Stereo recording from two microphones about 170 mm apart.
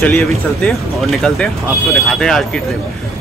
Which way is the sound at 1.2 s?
5° left (ahead or behind).